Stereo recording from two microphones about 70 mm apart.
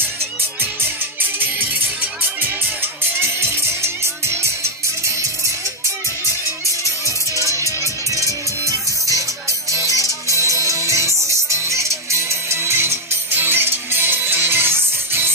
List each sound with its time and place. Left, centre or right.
0.6 s music: right
6.2 s music: left
8.1 s music: right